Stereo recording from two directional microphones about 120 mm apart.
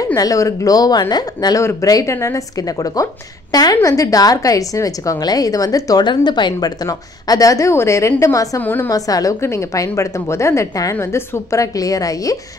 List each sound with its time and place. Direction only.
0.0 s a woman's voice: 30° left (ahead or behind)
8.9 s a woman's voice: 30° left (ahead or behind)